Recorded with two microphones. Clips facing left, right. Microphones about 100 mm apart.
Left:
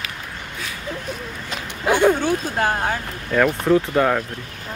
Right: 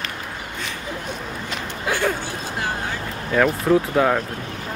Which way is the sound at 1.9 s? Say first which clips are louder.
Left 7 dB; 15° left (ahead or behind).